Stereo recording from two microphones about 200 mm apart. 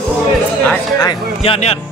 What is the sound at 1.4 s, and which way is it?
Speech, 30° left (ahead or behind).